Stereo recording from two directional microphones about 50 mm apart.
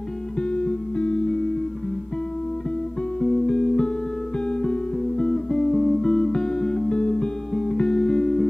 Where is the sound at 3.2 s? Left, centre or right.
Centre.